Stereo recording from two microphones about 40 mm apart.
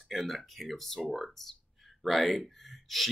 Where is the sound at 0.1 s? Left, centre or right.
Centre.